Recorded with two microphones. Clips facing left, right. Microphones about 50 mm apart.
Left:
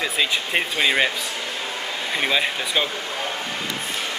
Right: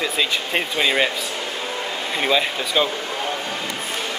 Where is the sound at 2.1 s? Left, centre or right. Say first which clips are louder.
Right 2 dB; centre.